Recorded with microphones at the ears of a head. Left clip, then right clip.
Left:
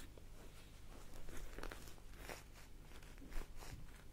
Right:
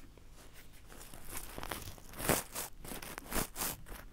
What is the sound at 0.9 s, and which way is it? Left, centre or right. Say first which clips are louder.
Crumpling: right 9 dB; right.